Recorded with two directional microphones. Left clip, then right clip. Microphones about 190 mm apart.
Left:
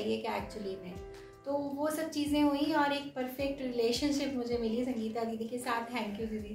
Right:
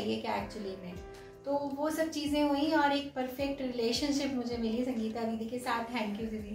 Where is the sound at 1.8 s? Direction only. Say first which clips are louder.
Right 1 dB; 30° left (ahead or behind).